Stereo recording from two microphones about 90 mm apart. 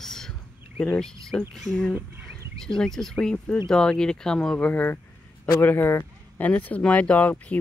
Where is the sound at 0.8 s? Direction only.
15° left (ahead or behind).